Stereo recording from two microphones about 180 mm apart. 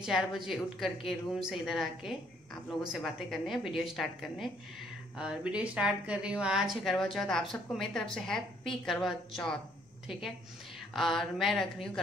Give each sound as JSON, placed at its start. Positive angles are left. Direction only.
{"t": 0.0, "sound": "a woman's voice", "side_deg": -5}
{"t": 10.9, "sound": "a woman's voice", "side_deg": 0}